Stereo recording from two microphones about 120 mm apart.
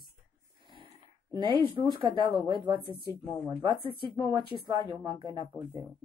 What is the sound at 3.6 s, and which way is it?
Speech, 40° right (ahead or behind).